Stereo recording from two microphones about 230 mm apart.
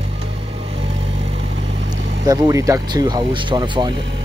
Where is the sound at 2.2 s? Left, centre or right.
Centre.